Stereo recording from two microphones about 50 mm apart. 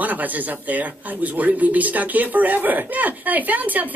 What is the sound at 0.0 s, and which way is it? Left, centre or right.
Speech, right.